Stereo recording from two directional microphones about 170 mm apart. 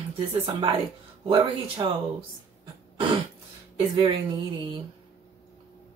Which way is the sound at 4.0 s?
25° right (ahead or behind).